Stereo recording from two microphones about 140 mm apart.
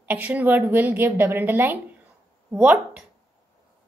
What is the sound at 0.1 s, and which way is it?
A woman's voice, 10° right (ahead or behind).